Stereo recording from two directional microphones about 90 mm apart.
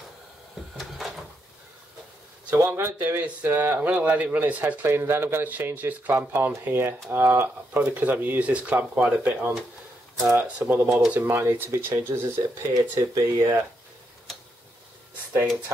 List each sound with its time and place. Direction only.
0.7 s door: centre (ahead or behind)
2.5 s speech: 25° right (ahead or behind)
10.9 s speech: 5° right (ahead or behind)
11.1 s speech: 25° right (ahead or behind)